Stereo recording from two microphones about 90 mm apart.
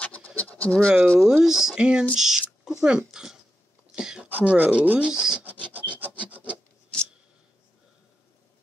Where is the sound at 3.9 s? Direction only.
10° right (ahead or behind).